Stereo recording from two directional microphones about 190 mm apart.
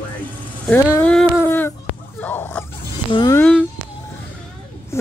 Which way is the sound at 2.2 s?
10° left (ahead or behind).